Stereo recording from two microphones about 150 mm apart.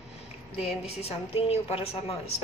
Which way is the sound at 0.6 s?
40° left (ahead or behind).